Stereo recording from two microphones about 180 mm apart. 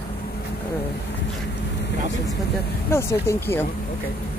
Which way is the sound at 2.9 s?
15° left (ahead or behind).